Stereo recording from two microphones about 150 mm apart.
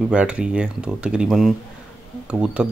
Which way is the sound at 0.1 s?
5° right (ahead or behind).